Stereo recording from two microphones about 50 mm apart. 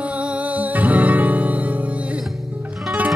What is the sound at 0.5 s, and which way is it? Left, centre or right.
Music, right.